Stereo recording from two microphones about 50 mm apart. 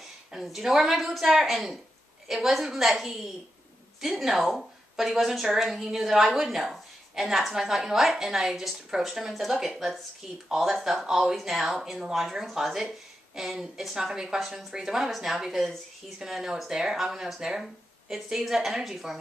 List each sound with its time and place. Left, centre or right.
0.3 s speech: centre